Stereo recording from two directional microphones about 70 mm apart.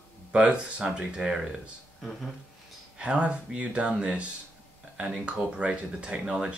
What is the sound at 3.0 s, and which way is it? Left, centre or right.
Speech, centre.